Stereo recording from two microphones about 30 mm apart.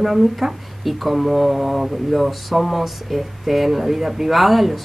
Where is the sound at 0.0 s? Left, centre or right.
Centre.